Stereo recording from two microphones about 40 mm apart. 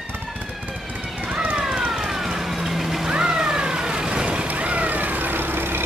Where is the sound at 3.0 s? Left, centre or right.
Right.